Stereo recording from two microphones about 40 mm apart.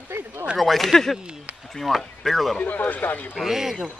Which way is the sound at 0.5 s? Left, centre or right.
Centre.